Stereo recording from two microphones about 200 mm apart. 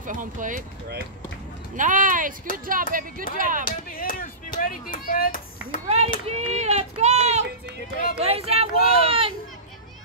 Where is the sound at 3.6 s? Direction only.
45° left (ahead or behind).